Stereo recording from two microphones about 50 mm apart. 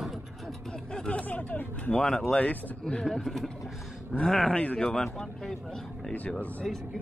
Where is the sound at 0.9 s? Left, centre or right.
Left.